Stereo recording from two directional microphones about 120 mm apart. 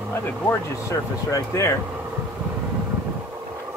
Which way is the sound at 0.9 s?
25° left (ahead or behind).